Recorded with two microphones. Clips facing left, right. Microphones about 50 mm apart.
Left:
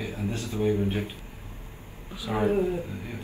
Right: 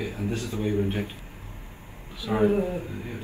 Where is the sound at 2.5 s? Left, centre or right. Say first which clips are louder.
Left 1 dB; right.